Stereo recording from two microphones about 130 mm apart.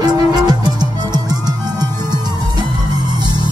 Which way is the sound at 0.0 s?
30° right (ahead or behind).